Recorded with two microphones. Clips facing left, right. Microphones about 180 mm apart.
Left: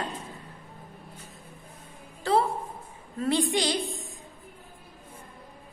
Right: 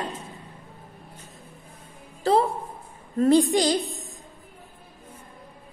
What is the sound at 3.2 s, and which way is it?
A woman's voice, 40° right (ahead or behind).